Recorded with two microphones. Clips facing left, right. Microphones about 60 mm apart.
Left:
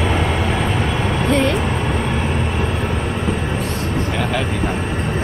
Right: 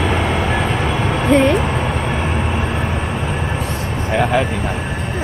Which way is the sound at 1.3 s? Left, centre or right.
Centre.